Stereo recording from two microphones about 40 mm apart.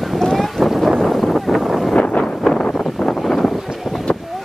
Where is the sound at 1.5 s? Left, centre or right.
Centre.